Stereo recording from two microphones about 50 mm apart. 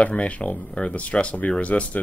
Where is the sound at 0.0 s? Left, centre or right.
Left.